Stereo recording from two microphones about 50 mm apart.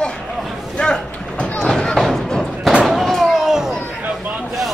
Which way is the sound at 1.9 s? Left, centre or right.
Centre.